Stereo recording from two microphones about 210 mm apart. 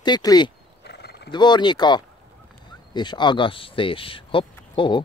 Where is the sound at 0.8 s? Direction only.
50° left (ahead or behind).